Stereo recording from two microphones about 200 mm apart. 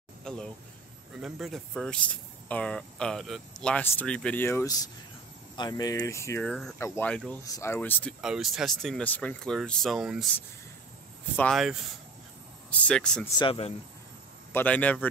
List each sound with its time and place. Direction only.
0.2 s a sound: 5° left (ahead or behind)
1.2 s speech: centre (ahead or behind)
6.4 s speech: 5° left (ahead or behind)
8.2 s speech: centre (ahead or behind)
11.3 s speech: centre (ahead or behind)
12.8 s speech: 5° left (ahead or behind)
13.4 s speech: 30° left (ahead or behind)
14.5 s speech: 10° left (ahead or behind)